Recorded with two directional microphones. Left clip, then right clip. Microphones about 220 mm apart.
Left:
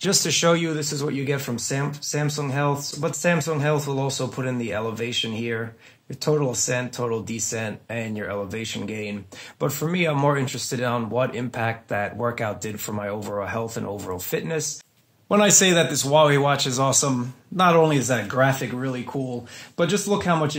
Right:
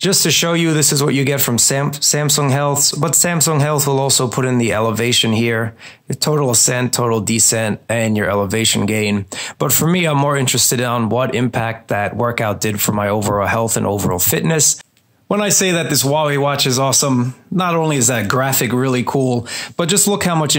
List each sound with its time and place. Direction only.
0.0 s speech: 20° right (ahead or behind); by 14.7 s 35° right (ahead or behind)
15.2 s speech: 20° right (ahead or behind); by 20.5 s 40° right (ahead or behind)